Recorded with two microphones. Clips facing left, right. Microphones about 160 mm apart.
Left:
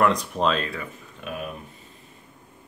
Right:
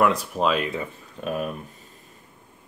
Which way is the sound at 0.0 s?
5° right (ahead or behind).